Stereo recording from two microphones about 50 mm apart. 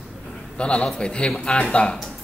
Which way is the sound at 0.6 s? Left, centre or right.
Left.